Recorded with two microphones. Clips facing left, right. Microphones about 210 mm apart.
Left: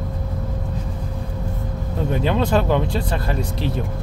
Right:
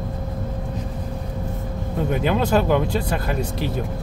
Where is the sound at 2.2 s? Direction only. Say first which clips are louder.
Even; 5° right (ahead or behind).